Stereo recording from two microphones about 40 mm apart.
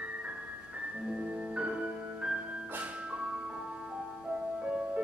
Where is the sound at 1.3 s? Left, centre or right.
Right.